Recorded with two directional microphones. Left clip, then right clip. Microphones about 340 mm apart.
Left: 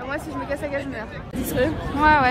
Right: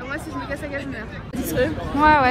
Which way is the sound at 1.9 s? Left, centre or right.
Centre.